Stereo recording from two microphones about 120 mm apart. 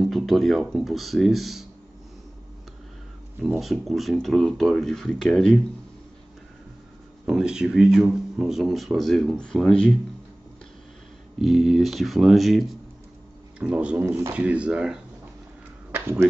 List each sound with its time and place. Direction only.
0.0 s speech: centre (ahead or behind)
3.5 s speech: centre (ahead or behind)
7.2 s speech: 5° right (ahead or behind)
11.3 s speech: centre (ahead or behind)
15.9 s a sound: 15° right (ahead or behind)